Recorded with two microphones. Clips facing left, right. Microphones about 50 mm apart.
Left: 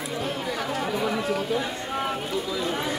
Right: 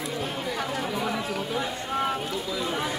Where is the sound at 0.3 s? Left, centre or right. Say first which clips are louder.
Left 1 dB; centre.